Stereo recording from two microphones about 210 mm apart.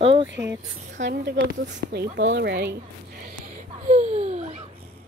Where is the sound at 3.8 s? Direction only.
35° right (ahead or behind).